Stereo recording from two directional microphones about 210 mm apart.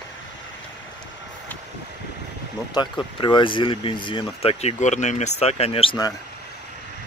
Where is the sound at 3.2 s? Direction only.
25° left (ahead or behind).